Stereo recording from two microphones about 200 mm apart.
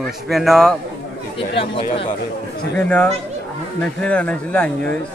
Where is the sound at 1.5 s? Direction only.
25° left (ahead or behind).